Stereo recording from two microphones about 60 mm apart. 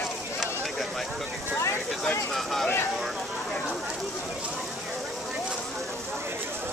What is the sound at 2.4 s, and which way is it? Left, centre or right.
Speech, centre.